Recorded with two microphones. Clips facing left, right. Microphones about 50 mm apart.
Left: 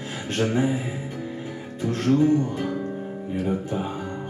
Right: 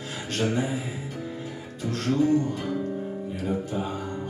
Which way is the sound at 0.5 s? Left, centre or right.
Centre.